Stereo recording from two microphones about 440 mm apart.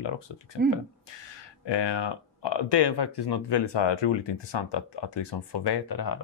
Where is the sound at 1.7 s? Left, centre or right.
Left.